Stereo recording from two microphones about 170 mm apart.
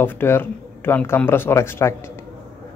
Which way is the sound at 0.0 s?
10° left (ahead or behind).